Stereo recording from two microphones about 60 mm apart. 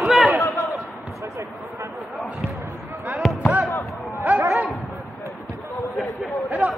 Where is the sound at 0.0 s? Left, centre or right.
Centre.